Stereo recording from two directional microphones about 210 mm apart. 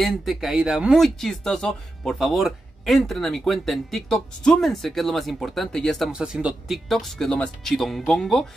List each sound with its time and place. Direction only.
0.0 s speech: centre (ahead or behind)